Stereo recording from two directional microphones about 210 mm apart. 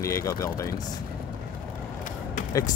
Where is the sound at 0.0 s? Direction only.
15° left (ahead or behind).